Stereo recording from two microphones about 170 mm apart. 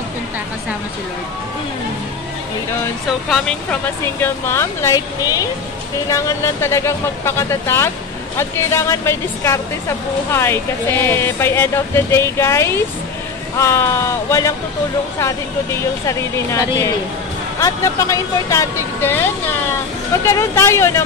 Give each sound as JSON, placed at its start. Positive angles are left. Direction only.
{"t": 3.3, "sound": "a woman's voice", "side_deg": 10}